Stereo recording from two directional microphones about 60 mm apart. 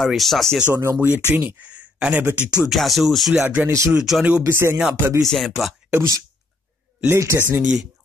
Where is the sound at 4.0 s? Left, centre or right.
Centre.